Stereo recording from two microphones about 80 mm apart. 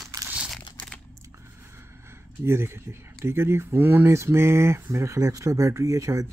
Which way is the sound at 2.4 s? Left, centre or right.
Right.